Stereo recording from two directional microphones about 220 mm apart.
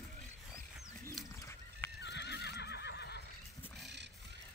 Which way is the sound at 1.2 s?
Centre (ahead or behind).